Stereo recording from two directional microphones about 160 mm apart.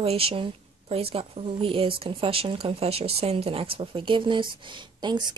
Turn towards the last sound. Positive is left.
turn(degrees=-25)  # may be behind; listen again after turning